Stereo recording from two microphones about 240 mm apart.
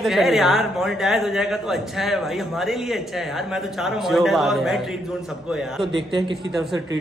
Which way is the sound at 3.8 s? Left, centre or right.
Centre.